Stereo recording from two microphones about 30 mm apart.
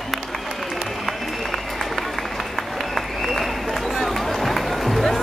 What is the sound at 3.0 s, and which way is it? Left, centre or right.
Applause, centre.